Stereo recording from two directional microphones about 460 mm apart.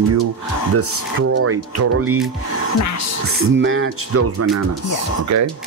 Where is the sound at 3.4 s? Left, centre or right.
Right.